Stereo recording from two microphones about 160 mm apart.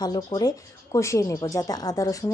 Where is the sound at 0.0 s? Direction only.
25° left (ahead or behind).